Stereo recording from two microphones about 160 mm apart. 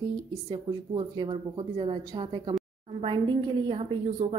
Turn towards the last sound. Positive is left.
turn(degrees=-35)  # may be behind; listen again after turning